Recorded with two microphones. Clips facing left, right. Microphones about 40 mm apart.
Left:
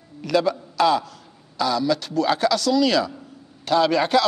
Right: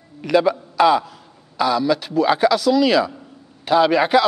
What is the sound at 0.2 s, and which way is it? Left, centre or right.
A man's voice, centre.